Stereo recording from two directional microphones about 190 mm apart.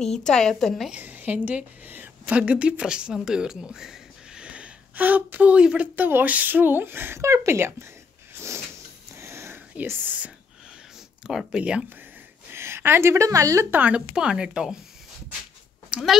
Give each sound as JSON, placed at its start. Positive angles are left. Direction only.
{"t": 0.0, "sound": "a woman's voice", "side_deg": 5}
{"t": 9.1, "sound": "whispering", "side_deg": -15}
{"t": 11.2, "sound": "a woman's voice", "side_deg": -5}
{"t": 15.9, "sound": "speech", "side_deg": 0}